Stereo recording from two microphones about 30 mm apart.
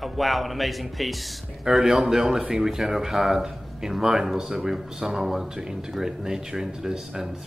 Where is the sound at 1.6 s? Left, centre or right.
Centre.